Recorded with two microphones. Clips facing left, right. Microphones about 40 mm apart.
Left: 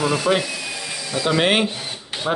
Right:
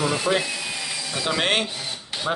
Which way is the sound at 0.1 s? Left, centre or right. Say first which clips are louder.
Left 3 dB; left.